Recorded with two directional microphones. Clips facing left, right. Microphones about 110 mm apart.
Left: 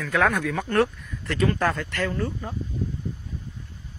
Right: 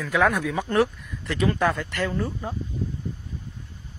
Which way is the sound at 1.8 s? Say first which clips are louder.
Even; 20° right (ahead or behind).